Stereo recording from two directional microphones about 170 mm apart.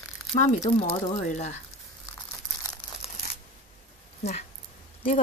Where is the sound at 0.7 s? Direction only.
35° left (ahead or behind).